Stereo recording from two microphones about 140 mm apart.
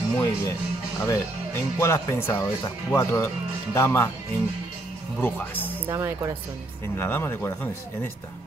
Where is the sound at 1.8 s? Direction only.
20° left (ahead or behind).